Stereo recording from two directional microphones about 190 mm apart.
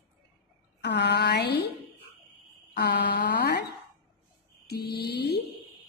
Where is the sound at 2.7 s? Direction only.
60° left (ahead or behind).